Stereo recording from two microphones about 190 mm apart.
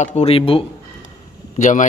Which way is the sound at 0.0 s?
35° left (ahead or behind).